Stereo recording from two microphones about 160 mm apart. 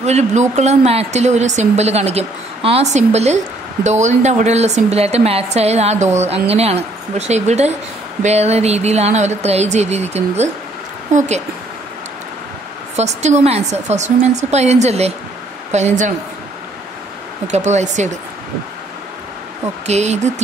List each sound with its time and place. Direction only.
0.0 s a woman's voice: 45° right (ahead or behind)
12.9 s a woman's voice: 45° right (ahead or behind)
17.5 s a woman's voice: 45° right (ahead or behind)
19.9 s a woman's voice: 45° right (ahead or behind)